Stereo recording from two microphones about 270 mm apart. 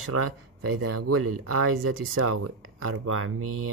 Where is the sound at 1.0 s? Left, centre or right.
Right.